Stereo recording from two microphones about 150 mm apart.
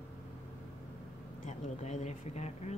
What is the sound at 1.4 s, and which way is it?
Speech, 50° left (ahead or behind).